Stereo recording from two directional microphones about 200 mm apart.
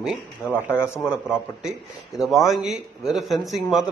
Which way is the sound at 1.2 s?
Centre (ahead or behind).